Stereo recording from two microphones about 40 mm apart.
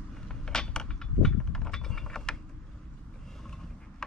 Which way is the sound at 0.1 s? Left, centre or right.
Centre.